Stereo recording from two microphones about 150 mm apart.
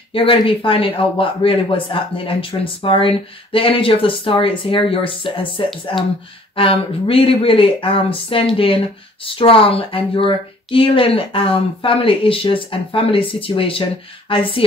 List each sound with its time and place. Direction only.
0.1 s speech: 35° left (ahead or behind)